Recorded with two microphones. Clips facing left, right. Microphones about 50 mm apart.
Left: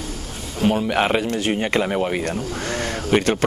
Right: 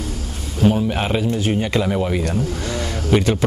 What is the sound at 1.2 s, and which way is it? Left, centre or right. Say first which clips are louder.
Speech: right 2 dB; left.